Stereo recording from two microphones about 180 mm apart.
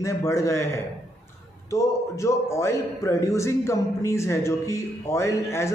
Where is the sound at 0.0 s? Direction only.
15° left (ahead or behind).